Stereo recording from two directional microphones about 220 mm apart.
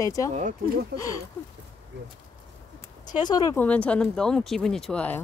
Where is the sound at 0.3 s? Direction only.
35° right (ahead or behind).